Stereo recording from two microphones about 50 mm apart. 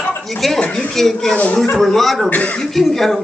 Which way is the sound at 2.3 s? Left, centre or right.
Left.